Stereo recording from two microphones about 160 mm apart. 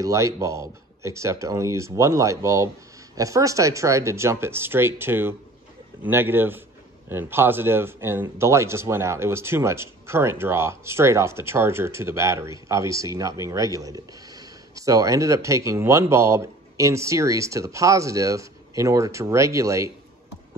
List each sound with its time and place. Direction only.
0.0 s speech: 20° right (ahead or behind)